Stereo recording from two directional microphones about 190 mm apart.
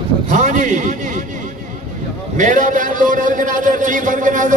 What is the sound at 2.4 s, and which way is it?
A man's voice, 40° right (ahead or behind).